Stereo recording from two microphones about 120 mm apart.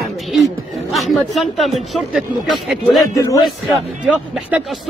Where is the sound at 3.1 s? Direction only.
25° left (ahead or behind).